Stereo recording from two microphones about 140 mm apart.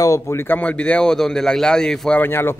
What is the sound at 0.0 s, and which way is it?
Speech, 20° left (ahead or behind).